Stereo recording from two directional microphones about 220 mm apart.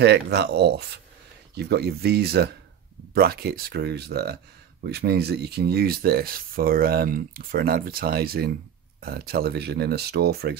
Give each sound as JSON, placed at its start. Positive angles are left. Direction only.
{"t": 0.0, "sound": "speech", "side_deg": -50}